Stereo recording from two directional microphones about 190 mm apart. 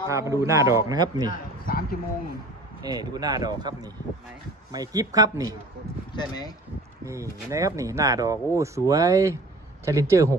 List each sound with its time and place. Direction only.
0.0 s speech: 15° right (ahead or behind)
1.7 s a sound: 50° left (ahead or behind)
2.8 s speech: 20° right (ahead or behind)
6.1 s speech: 20° left (ahead or behind)
7.1 s speech: 15° right (ahead or behind)